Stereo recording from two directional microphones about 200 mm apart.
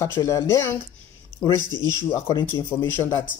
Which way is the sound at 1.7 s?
20° right (ahead or behind).